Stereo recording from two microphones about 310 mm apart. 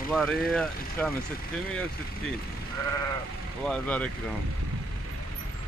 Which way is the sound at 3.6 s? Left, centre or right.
Centre.